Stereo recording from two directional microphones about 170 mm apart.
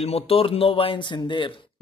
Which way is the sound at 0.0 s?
35° left (ahead or behind).